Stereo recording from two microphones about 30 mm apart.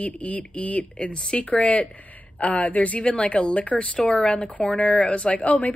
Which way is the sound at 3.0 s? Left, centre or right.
Left.